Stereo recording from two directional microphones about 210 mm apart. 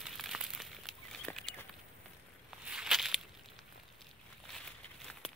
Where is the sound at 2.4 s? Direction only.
5° right (ahead or behind).